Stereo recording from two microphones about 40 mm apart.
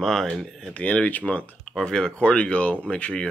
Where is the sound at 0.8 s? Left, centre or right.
Left.